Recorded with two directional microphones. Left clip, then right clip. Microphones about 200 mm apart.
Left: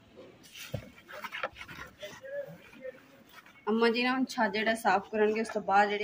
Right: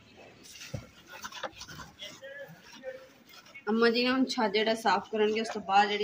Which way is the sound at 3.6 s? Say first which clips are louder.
Right 1 dB; 35° left (ahead or behind).